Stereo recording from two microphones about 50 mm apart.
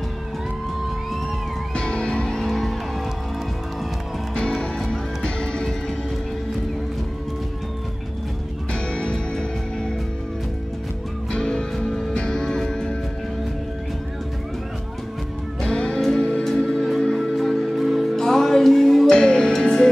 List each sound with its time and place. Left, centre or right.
1.8 s music: centre
2.4 s music: centre
4.4 s music: centre
8.7 s music: centre
11.3 s music: centre
15.6 s music: centre
19.0 s music: centre